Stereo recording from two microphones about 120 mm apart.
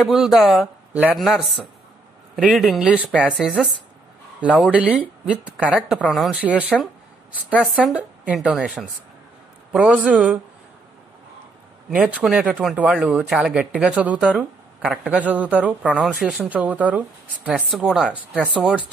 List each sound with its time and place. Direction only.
0.0 s speech: centre (ahead or behind)
4.4 s speech: 10° right (ahead or behind)
5.9 s speech: 5° left (ahead or behind)
6.3 s speech: 10° right (ahead or behind)
9.7 s speech: 10° right (ahead or behind)
11.9 s speech: 10° right (ahead or behind)